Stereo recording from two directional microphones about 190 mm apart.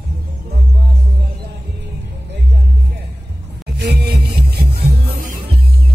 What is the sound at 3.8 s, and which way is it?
Music, 55° right (ahead or behind).